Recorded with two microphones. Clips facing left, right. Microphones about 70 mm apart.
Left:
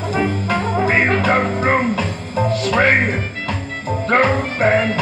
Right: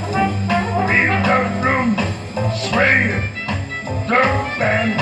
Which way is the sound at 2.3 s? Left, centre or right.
Centre.